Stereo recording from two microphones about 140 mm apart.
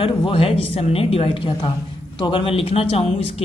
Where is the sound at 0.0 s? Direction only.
40° left (ahead or behind).